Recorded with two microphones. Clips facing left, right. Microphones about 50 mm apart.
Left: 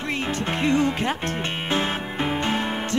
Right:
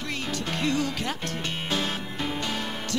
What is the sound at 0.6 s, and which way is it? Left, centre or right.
Speech, left.